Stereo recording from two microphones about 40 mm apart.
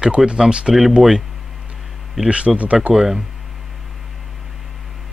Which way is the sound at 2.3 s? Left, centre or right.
Right.